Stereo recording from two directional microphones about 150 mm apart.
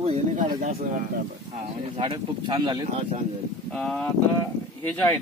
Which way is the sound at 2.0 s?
30° right (ahead or behind).